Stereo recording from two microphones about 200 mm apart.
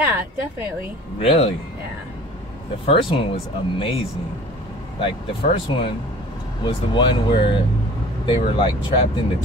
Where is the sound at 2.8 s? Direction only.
25° left (ahead or behind).